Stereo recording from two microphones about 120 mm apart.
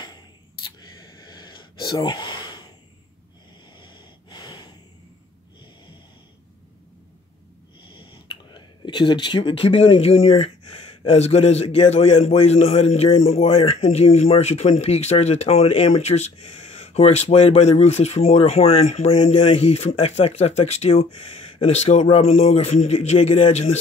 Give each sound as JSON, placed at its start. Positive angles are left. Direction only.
{"t": 0.7, "sound": "a sound", "side_deg": 35}
{"t": 3.7, "sound": "snort", "side_deg": 40}
{"t": 8.0, "sound": "speech", "side_deg": 45}